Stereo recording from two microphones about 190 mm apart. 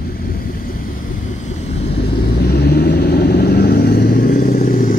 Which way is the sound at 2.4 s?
55° left (ahead or behind).